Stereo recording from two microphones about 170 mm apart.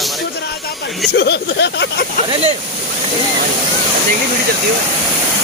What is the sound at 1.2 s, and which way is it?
Speech, 80° left.